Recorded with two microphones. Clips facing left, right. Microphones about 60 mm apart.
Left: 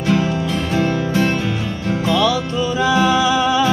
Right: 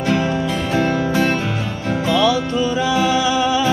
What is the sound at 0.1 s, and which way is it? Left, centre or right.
Music, centre.